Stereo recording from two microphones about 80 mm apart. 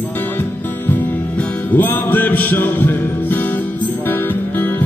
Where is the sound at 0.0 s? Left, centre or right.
Left.